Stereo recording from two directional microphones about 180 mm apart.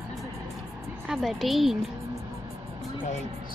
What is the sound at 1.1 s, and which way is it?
Speech, centre (ahead or behind).